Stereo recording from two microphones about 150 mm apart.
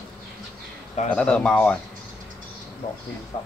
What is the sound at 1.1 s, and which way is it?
Speech, 5° left (ahead or behind).